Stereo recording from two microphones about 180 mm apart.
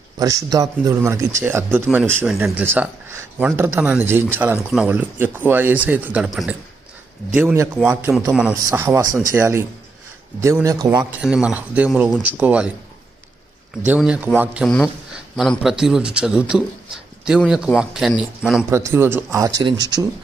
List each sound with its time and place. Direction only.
0.2 s speech: 20° right (ahead or behind)
11.1 s speech: 5° right (ahead or behind)
13.8 s speech: 5° right (ahead or behind)
15.3 s a man's voice: centre (ahead or behind)
17.7 s a man's voice: centre (ahead or behind)
18.7 s speech: 15° right (ahead or behind)